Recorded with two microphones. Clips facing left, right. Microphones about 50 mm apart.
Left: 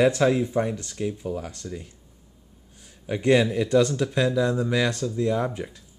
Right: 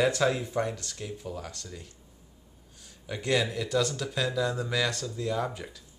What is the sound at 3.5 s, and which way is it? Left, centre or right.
Speech, left.